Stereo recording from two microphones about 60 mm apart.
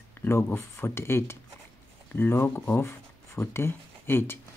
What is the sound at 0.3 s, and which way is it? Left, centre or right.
Speech, left.